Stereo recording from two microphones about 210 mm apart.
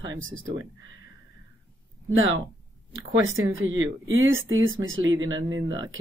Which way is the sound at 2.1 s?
70° right (ahead or behind).